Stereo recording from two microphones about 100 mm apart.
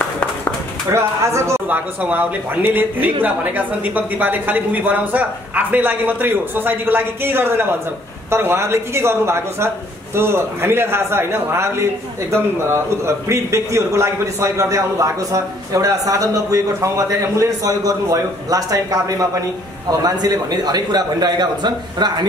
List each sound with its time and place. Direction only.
0.8 s a man's voice: 30° right (ahead or behind)
1.7 s a man's voice: 15° right (ahead or behind); by 22.1 s 45° right (ahead or behind)